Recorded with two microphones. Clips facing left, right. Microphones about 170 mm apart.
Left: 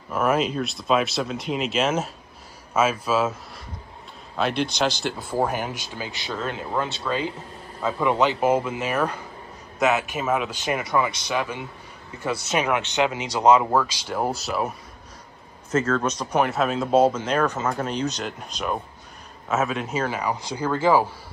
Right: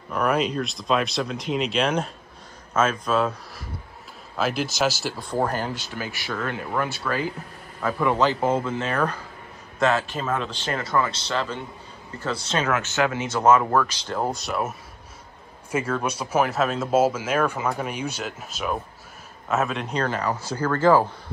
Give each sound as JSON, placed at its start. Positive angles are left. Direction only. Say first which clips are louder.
{"t": 0.1, "sound": "a man's voice", "louder": "left 1 dB", "side_deg": 0}
{"t": 15.7, "sound": "speech", "louder": "left 3 dB", "side_deg": -10}